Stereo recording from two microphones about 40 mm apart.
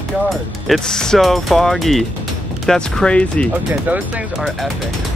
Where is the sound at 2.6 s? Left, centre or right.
Centre.